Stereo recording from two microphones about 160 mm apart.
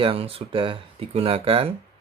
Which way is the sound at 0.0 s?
35° right (ahead or behind).